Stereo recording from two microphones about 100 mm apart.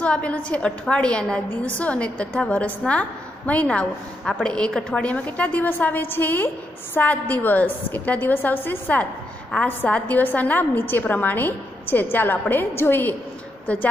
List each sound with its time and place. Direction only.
0.0 s a woman's voice: 10° left (ahead or behind)